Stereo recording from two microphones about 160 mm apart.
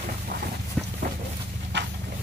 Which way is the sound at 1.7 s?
90° right.